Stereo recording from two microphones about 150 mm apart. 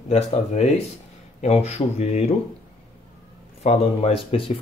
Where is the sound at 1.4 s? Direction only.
45° left (ahead or behind).